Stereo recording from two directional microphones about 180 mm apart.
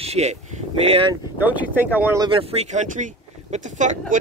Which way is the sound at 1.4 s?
10° right (ahead or behind).